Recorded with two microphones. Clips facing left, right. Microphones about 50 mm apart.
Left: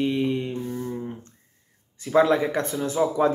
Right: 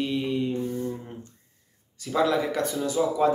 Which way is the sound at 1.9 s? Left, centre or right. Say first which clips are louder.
Left 4 dB; left.